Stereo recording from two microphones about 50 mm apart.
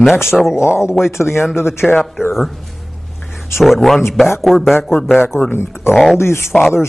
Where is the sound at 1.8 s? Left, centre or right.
Centre.